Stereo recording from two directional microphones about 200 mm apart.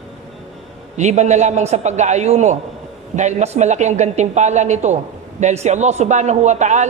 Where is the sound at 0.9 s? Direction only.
35° right (ahead or behind).